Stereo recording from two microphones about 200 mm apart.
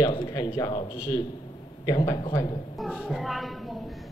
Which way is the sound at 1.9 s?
20° left (ahead or behind).